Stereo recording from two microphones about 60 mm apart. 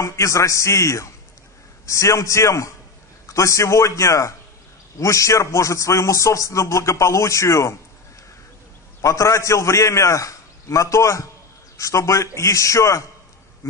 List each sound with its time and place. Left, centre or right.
0.0 s a man's voice: left
9.0 s a man's voice: left